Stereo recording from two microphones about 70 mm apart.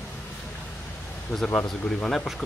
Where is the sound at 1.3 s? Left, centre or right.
Left.